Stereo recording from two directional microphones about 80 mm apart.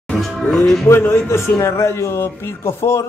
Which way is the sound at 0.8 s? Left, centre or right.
Left.